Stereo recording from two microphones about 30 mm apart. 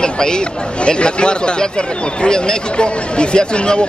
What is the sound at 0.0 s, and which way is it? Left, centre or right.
Speech, left.